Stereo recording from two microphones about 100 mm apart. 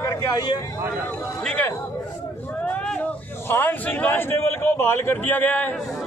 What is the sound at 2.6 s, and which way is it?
Hubbub, 10° left (ahead or behind).